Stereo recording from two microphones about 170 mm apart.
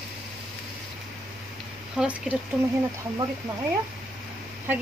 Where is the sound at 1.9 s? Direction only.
5° right (ahead or behind).